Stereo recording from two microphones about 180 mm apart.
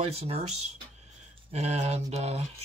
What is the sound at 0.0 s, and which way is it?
Speech, 35° right (ahead or behind).